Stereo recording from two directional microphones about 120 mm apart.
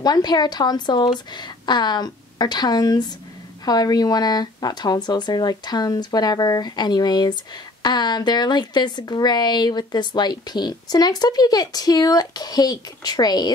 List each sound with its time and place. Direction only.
0.0 s speech: 35° left (ahead or behind)